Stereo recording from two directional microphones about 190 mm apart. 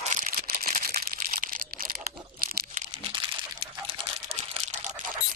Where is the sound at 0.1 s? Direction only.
45° right (ahead or behind); by 3.6 s 25° right (ahead or behind).